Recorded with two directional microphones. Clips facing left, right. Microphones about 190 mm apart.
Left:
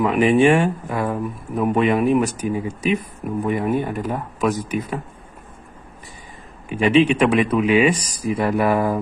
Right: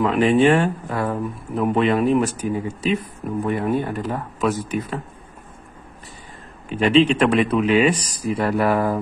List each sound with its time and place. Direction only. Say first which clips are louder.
0.0 s speech: left 1 dB; 10° left (ahead or behind)
6.7 s speech: even; 10° left (ahead or behind)